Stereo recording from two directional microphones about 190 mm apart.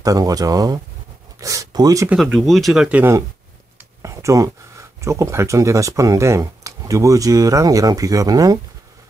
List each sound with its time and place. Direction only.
0.0 s speech: 20° right (ahead or behind)
2.0 s speech: 5° right (ahead or behind)
4.0 s a sound: 15° right (ahead or behind)
5.0 s speech: 15° right (ahead or behind)